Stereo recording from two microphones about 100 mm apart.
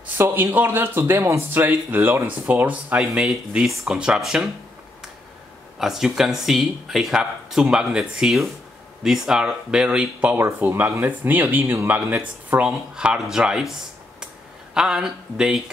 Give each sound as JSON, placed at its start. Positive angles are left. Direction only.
{"t": 0.0, "sound": "speech", "side_deg": -20}
{"t": 5.8, "sound": "speech", "side_deg": -5}
{"t": 10.3, "sound": "speech", "side_deg": -25}